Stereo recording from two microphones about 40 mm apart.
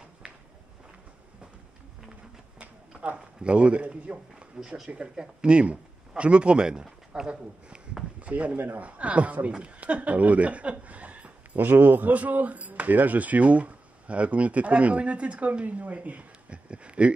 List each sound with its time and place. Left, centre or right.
3.0 s a man's voice: right
11.5 s speech: right